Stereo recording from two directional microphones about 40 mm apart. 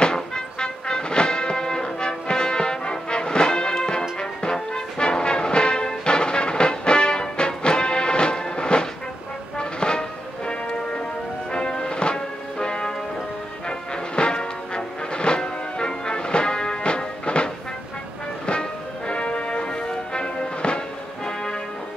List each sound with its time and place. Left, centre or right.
0.0 s music: left
18.5 s music: left